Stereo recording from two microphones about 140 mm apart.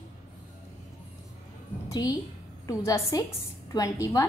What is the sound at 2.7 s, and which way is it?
A woman's voice, 25° left (ahead or behind).